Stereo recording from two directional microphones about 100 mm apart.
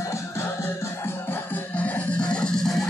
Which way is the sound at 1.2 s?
15° left (ahead or behind).